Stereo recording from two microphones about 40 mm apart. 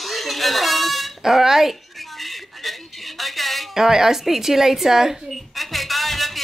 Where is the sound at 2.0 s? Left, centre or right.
Centre.